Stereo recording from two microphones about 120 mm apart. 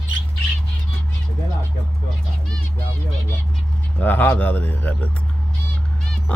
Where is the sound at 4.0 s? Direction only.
15° left (ahead or behind).